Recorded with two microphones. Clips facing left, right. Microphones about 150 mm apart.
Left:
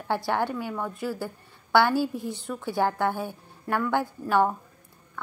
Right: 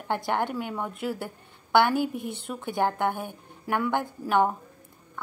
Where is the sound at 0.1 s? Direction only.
15° right (ahead or behind).